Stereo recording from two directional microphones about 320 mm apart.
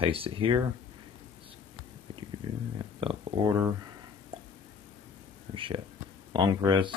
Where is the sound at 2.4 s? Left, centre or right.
Centre.